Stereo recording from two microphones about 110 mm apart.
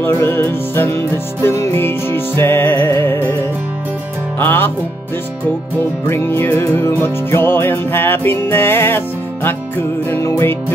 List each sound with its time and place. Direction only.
0.0 s music: 20° left (ahead or behind)
4.4 s music: 20° left (ahead or behind)
6.0 s music: 20° left (ahead or behind)